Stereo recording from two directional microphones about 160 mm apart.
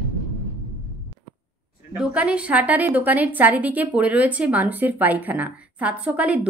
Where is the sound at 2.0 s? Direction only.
5° right (ahead or behind).